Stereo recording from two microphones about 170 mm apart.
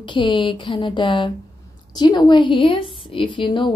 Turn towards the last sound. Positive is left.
turn(degrees=30)  # may be behind; listen again after turning